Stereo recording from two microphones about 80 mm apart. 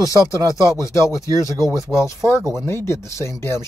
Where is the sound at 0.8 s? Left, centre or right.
Left.